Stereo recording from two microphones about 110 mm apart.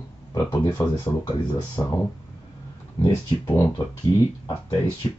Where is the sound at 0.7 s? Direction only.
40° left (ahead or behind).